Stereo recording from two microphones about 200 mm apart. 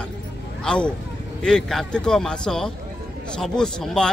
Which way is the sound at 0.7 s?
5° left (ahead or behind).